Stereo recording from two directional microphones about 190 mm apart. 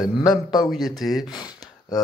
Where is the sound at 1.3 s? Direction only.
20° left (ahead or behind).